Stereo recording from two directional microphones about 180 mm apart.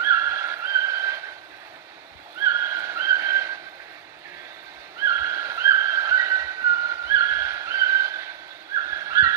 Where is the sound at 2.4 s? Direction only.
15° right (ahead or behind).